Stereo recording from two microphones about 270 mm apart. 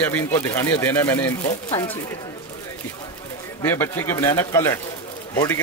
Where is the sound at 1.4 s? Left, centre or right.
Left.